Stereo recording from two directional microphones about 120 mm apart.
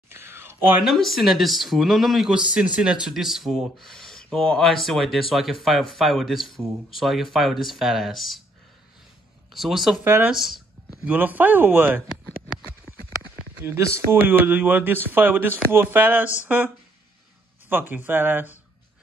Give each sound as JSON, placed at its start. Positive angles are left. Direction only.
{"t": 0.1, "sound": "a sound", "side_deg": -20}
{"t": 0.8, "sound": "speech", "side_deg": 0}
{"t": 9.5, "sound": "speech", "side_deg": 0}
{"t": 10.0, "sound": "speech", "side_deg": -20}
{"t": 10.3, "sound": "speech", "side_deg": 0}
{"t": 11.1, "sound": "speech", "side_deg": -15}
{"t": 12.9, "sound": "clip-clop", "side_deg": 25}
{"t": 13.9, "sound": "speech", "side_deg": -15}